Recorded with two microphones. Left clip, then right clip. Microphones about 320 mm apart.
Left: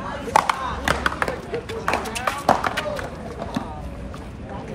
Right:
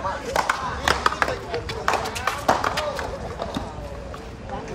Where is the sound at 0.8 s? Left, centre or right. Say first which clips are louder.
Right 1 dB; right.